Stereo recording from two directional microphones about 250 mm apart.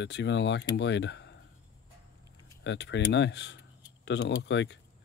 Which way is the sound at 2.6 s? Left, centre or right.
Left.